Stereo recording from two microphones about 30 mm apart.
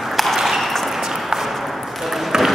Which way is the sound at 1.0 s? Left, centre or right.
Centre.